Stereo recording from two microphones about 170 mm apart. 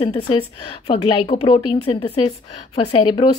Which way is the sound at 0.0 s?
30° left (ahead or behind).